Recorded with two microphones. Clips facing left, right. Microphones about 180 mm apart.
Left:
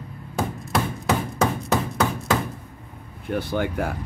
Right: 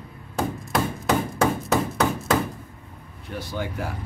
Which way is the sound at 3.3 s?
60° left (ahead or behind).